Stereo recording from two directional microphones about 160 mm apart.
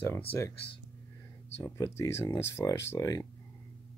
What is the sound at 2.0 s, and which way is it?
Speech, 15° left (ahead or behind).